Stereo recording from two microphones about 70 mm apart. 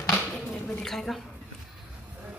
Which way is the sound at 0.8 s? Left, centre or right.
Centre.